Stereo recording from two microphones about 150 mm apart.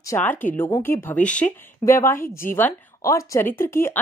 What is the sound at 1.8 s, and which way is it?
A woman's voice, 20° left (ahead or behind).